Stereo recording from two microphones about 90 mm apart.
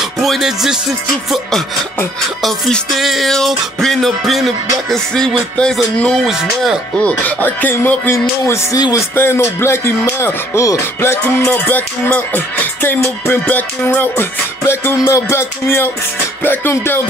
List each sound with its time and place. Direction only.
0.0 s music: centre (ahead or behind)
2.4 s music: centre (ahead or behind)
7.0 s speech: 15° left (ahead or behind)
14.6 s music: 30° left (ahead or behind)
16.4 s speech: 25° left (ahead or behind)